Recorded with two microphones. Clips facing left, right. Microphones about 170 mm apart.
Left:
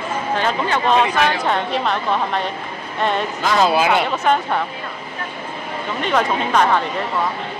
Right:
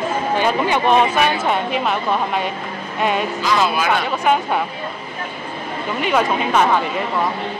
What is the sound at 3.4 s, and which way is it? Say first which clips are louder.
Speech: left 3 dB; 50° left (ahead or behind).